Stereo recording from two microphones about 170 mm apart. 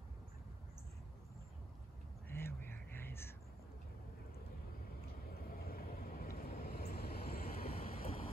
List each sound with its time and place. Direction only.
2.2 s whispering: 15° left (ahead or behind)
5.3 s vehicle: 60° left (ahead or behind)
7.8 s a sound: 60° left (ahead or behind)